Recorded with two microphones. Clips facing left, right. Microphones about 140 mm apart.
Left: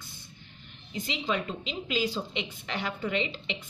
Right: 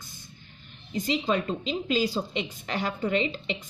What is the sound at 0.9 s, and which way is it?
A woman's voice, 40° right (ahead or behind).